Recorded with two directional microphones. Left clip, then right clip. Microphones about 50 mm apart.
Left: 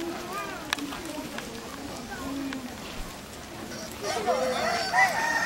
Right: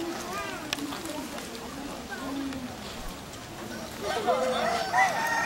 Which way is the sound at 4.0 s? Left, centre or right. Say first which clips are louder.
Even; left.